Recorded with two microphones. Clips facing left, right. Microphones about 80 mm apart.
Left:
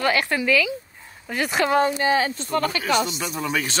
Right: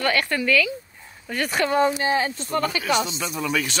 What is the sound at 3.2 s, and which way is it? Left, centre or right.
Speech, left.